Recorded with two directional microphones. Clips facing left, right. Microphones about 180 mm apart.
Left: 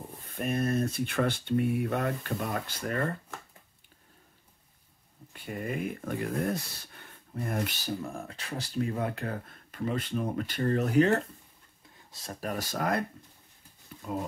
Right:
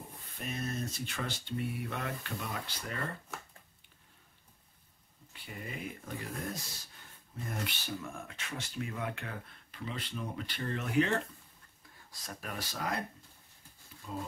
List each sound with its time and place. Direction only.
0.4 s speech: 55° left (ahead or behind)
5.3 s speech: 50° left (ahead or behind)
7.8 s speech: 35° left (ahead or behind)
12.1 s speech: 30° left (ahead or behind); by 13.0 s 55° left (ahead or behind)
14.0 s speech: 60° left (ahead or behind)